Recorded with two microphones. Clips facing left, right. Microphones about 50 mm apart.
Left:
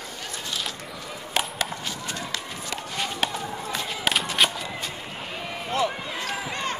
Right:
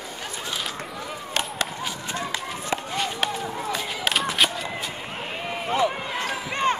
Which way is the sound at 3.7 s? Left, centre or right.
Centre.